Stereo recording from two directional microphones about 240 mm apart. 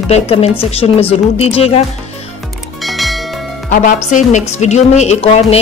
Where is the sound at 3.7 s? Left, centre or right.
Left.